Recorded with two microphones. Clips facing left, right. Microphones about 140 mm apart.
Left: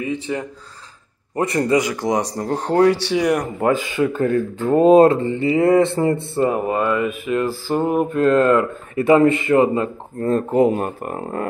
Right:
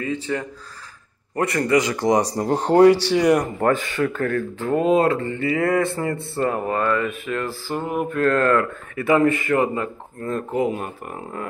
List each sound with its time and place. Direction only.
0.0 s speech: 15° left (ahead or behind)
1.8 s speech: 5° left (ahead or behind)
2.3 s speech: 10° right (ahead or behind)
3.6 s speech: 15° left (ahead or behind); by 11.4 s 45° left (ahead or behind)